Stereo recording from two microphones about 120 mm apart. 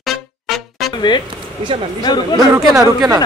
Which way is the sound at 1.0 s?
40° left (ahead or behind).